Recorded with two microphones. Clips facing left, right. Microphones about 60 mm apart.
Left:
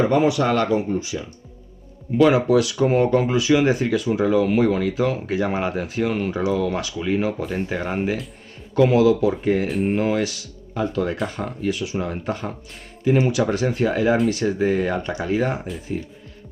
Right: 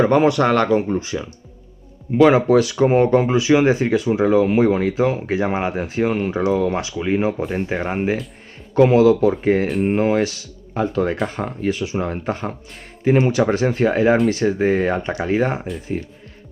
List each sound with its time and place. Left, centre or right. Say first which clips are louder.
0.0 s speech: right 3 dB; right
2.2 s speech: right 3 dB; right